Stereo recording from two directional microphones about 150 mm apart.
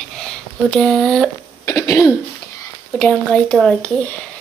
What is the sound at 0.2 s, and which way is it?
Speech, 5° left (ahead or behind).